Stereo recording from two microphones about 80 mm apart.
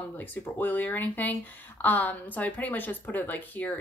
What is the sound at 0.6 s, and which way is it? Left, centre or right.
Speech, left.